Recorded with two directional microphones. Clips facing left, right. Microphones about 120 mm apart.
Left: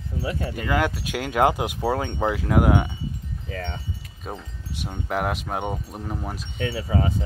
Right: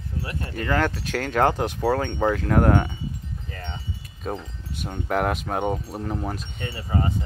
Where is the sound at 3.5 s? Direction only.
90° left.